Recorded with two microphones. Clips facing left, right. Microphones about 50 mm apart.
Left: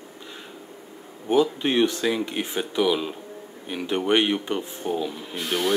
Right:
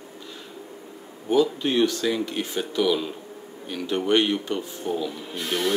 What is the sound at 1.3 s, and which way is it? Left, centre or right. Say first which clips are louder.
Speech: even; left.